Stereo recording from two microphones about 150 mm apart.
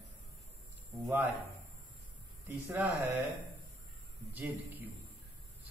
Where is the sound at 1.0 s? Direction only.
10° right (ahead or behind).